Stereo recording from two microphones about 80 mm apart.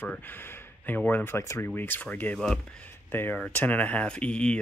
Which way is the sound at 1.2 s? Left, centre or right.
Left.